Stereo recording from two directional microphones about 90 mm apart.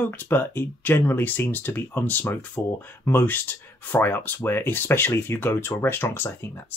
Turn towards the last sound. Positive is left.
turn(degrees=25)  # may be behind; listen again after turning